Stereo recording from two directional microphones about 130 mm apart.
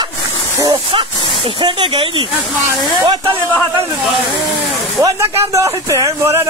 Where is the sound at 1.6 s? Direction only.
40° right (ahead or behind).